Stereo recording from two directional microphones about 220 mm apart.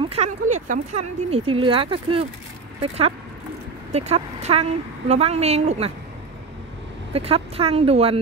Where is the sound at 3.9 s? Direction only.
30° right (ahead or behind).